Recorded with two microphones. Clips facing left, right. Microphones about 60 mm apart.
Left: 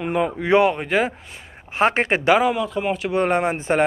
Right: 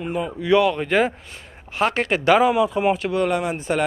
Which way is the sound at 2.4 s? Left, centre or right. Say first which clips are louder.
Right 2 dB; centre.